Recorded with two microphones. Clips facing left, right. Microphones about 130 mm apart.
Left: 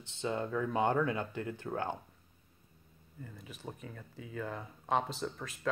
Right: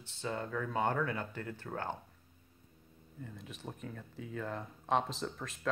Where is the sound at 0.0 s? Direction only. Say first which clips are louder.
Left 3 dB; 20° left (ahead or behind).